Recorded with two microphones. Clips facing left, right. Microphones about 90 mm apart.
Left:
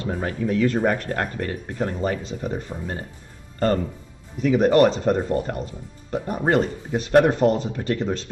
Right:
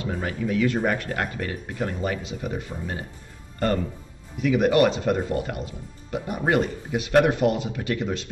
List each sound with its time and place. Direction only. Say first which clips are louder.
0.0 s speech: left 2 dB; 40° left (ahead or behind)